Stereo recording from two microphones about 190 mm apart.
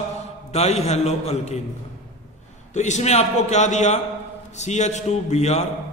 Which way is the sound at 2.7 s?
40° left (ahead or behind).